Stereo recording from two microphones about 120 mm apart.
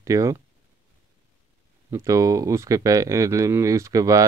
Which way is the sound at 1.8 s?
25° right (ahead or behind).